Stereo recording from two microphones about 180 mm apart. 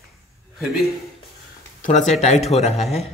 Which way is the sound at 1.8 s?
40° left (ahead or behind).